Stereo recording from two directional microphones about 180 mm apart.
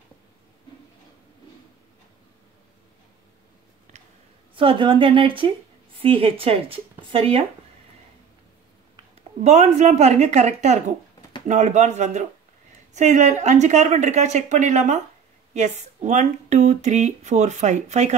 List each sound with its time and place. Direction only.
4.6 s speech: 30° right (ahead or behind)
9.4 s speech: 35° right (ahead or behind)